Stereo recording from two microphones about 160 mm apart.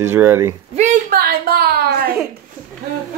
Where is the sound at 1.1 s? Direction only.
70° right (ahead or behind).